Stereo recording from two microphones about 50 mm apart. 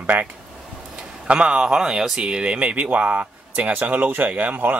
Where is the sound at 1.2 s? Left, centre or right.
Right.